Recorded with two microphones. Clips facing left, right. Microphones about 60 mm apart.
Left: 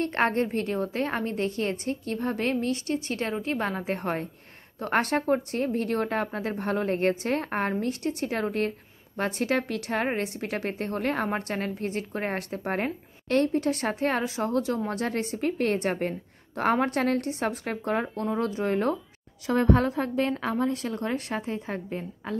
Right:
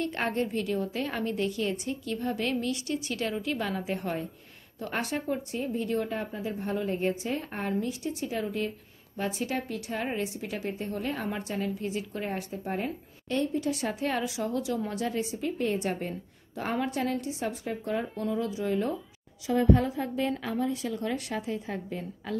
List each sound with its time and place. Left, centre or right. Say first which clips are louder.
0.0 s a woman's voice: left 5 dB; left